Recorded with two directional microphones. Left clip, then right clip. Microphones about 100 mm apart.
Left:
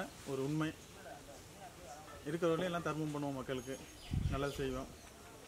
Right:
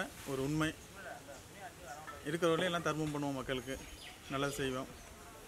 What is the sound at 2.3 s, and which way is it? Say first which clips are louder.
Speech: right 3 dB; 20° right (ahead or behind).